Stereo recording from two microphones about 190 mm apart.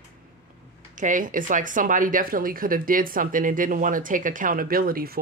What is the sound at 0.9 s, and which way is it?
Speech, 45° right (ahead or behind).